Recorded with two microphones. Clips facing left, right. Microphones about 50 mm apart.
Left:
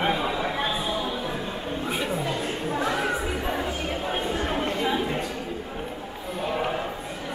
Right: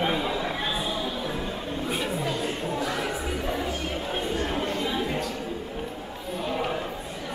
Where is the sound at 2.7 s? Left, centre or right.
Left.